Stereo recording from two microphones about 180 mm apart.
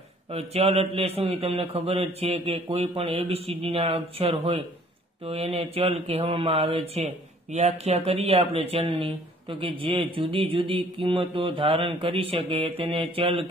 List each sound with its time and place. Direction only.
0.3 s a man's voice: 35° right (ahead or behind)